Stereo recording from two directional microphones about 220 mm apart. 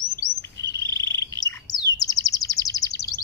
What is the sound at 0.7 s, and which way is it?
Frog, 20° right (ahead or behind).